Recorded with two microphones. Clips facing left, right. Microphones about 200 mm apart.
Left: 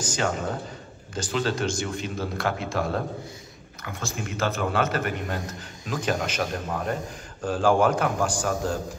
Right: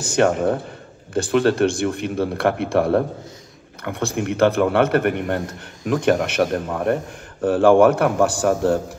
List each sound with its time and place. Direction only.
0.1 s a man's voice: 60° right (ahead or behind)